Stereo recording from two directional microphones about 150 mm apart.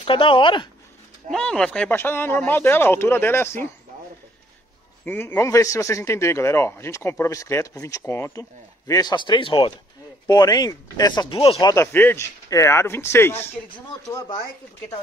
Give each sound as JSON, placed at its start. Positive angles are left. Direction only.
{"t": 0.0, "sound": "speech", "side_deg": 35}
{"t": 1.3, "sound": "speech", "side_deg": 5}
{"t": 5.0, "sound": "a man's voice", "side_deg": 15}
{"t": 11.6, "sound": "speech", "side_deg": 20}